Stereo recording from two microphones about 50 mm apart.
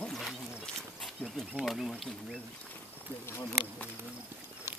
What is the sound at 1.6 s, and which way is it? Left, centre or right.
Speech, centre.